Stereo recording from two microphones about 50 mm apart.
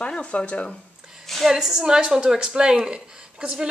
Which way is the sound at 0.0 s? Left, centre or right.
Left.